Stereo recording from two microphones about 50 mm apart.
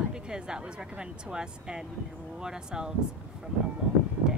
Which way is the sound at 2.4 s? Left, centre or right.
Centre.